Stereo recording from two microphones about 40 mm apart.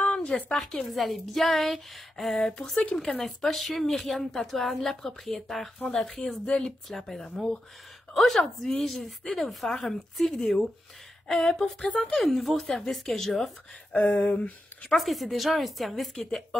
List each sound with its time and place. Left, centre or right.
0.0 s a sound: left
0.3 s a woman's voice: centre
14.3 s speech: left
15.0 s a woman's voice: centre